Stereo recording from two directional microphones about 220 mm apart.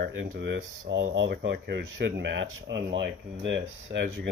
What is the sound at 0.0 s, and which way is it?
Speech, 50° right (ahead or behind).